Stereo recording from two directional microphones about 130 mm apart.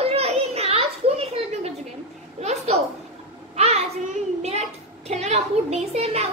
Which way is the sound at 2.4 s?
55° right (ahead or behind).